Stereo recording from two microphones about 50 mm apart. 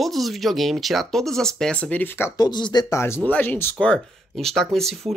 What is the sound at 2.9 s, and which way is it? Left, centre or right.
Speech, left.